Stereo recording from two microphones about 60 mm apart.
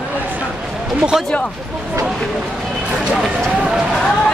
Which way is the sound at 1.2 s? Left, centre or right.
Centre.